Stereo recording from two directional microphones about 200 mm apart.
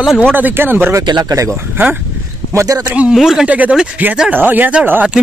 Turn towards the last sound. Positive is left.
turn(degrees=-10)  # may be behind; listen again after turning